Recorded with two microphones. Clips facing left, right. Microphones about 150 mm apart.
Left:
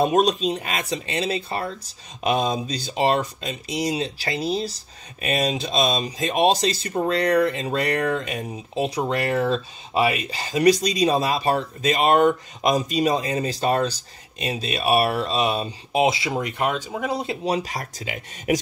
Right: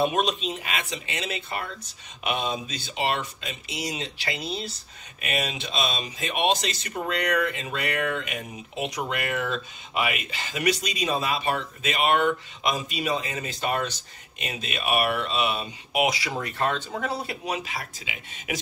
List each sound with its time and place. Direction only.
0.0 s speech: 40° left (ahead or behind); by 17.4 s 15° left (ahead or behind)
17.5 s speech: 40° left (ahead or behind)